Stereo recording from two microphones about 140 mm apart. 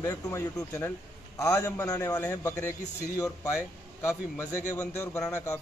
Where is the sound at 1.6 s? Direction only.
10° left (ahead or behind).